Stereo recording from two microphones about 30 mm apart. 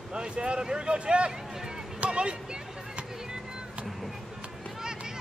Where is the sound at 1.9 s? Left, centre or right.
Right.